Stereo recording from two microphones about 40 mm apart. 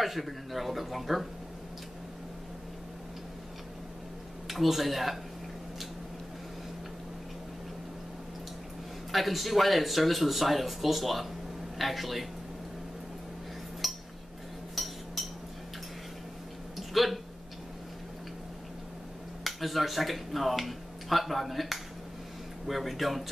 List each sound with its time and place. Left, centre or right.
0.0 s speech: centre
4.5 s speech: centre
9.1 s speech: centre
13.8 s cutlery: centre
14.8 s a sound: centre
15.2 s cutlery: centre
16.7 s a sound: centre
19.4 s speech: centre